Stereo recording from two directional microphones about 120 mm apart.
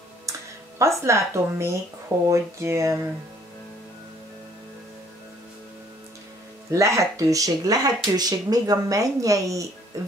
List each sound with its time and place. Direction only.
0.3 s speech: 25° right (ahead or behind)
6.7 s speech: 25° right (ahead or behind)